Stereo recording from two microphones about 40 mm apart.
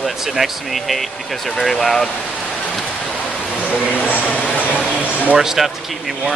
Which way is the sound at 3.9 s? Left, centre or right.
Left.